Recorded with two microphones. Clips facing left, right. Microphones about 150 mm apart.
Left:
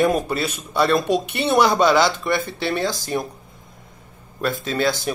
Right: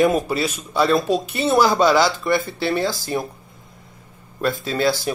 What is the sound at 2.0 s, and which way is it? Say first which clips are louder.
Speech: right 1 dB; 20° left (ahead or behind).